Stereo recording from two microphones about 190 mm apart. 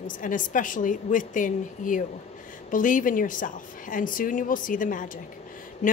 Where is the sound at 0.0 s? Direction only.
45° left (ahead or behind).